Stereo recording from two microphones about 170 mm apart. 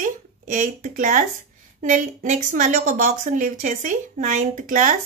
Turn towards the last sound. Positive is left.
turn(degrees=-45)  # may be behind; listen again after turning